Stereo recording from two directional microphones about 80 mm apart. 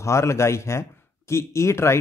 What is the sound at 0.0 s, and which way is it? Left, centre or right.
Speech, left.